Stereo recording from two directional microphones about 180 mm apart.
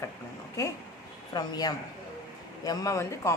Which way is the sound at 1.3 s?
20° left (ahead or behind).